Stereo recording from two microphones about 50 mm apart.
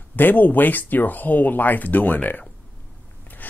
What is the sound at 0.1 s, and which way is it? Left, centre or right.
Speech, left.